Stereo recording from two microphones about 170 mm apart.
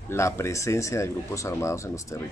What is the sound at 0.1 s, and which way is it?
Speech, 15° left (ahead or behind).